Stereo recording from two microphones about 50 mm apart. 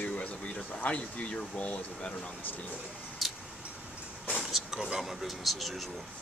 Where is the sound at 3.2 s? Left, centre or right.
Centre.